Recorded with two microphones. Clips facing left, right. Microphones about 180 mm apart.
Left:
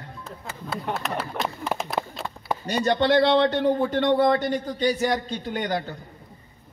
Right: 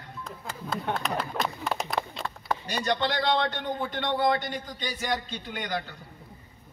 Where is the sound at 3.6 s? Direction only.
35° left (ahead or behind).